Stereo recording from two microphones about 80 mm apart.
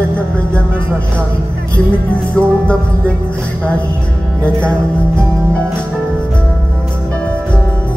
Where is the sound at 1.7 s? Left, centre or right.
Centre.